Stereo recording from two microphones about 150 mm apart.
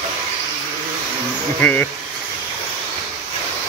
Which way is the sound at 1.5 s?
10° left (ahead or behind).